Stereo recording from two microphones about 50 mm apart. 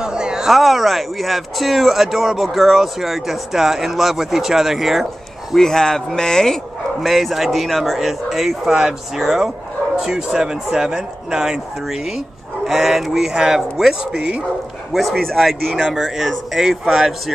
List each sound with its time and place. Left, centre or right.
0.0 s a sound: centre
0.5 s speech: centre
5.6 s speech: centre
14.9 s speech: centre
15.7 s speech: centre
16.8 s speech: centre